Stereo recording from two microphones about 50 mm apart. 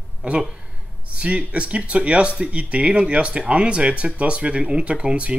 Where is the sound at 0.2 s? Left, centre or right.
Right.